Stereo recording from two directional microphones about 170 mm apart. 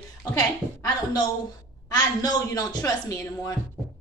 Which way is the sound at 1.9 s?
20° left (ahead or behind).